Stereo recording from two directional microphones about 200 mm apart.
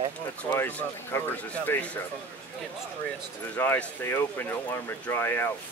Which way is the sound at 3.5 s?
10° left (ahead or behind).